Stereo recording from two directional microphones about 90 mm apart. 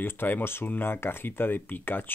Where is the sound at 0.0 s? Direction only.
25° left (ahead or behind).